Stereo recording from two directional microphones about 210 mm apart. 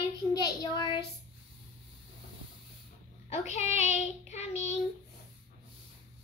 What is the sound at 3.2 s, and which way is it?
A child's voice, 30° left (ahead or behind).